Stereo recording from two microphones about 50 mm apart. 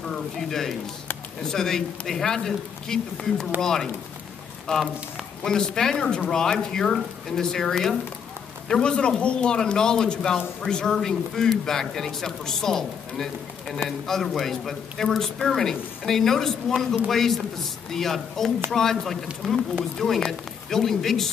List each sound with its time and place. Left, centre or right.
0.1 s a man's voice: centre
8.6 s a man's voice: centre